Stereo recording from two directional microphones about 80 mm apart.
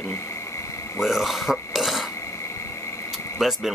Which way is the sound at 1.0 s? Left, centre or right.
Centre.